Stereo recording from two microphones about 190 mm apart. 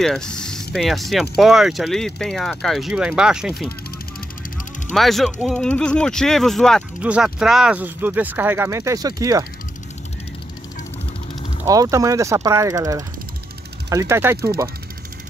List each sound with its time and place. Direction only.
0.0 s speech: 5° left (ahead or behind)
4.9 s speech: centre (ahead or behind); by 9.5 s 20° right (ahead or behind)
11.6 s speech: 20° right (ahead or behind)